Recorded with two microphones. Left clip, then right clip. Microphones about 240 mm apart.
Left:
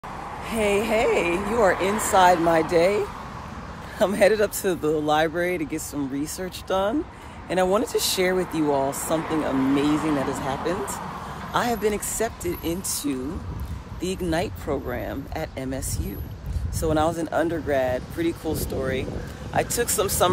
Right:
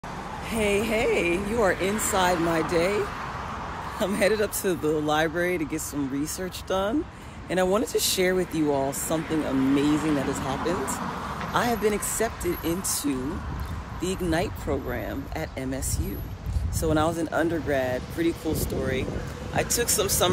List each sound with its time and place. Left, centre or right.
0.5 s speech: centre
4.0 s speech: left
9.2 s speech: left
11.5 s speech: centre
16.8 s speech: centre